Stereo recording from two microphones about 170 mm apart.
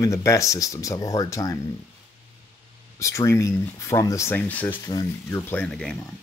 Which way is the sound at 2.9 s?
15° left (ahead or behind).